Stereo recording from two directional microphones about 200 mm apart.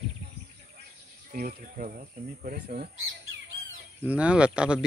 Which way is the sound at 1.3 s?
45° right (ahead or behind).